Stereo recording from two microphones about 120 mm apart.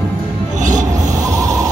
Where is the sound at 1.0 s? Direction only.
30° right (ahead or behind).